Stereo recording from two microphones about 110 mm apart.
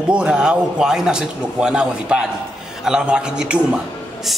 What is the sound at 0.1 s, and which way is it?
A man's voice, 10° right (ahead or behind).